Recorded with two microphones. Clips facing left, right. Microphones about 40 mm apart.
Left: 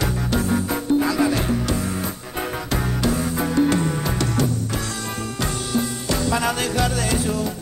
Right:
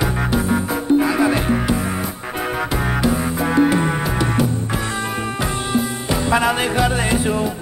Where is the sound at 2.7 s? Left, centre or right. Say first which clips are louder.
Right 2 dB; centre.